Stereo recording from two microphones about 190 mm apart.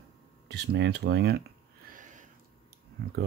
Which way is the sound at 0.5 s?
60° right (ahead or behind).